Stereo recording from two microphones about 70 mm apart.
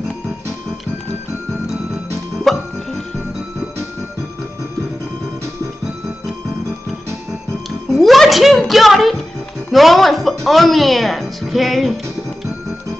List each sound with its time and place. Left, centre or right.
2.5 s music: centre
7.9 s music: centre
9.7 s speech: centre